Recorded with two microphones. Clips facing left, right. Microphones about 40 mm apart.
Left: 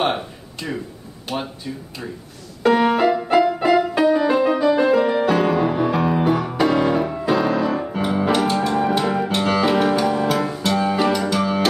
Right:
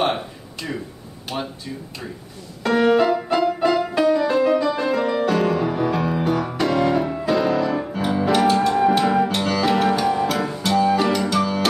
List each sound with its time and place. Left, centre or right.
0.0 s a sound: centre
2.6 s keyboard: centre
3.3 s music: centre
6.4 s piano: centre
7.2 s music: centre
9.4 s music: centre
9.7 s music: centre